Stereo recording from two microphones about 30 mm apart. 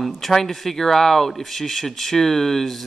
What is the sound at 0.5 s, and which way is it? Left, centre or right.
Speech, centre.